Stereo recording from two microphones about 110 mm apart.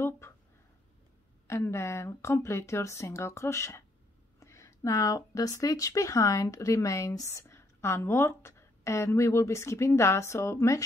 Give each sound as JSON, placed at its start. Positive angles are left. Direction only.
{"t": 1.5, "sound": "speech", "side_deg": 25}